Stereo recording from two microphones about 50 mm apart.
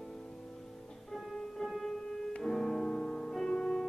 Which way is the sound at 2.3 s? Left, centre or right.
Centre.